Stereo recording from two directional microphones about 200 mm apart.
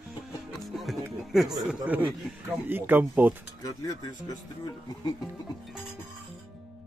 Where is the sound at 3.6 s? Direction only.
20° left (ahead or behind).